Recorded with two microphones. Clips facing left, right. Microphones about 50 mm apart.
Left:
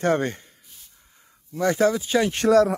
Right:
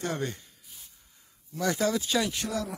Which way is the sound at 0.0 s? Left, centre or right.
Left.